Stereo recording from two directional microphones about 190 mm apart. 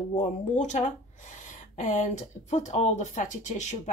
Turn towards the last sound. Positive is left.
turn(degrees=35)  # may be behind; listen again after turning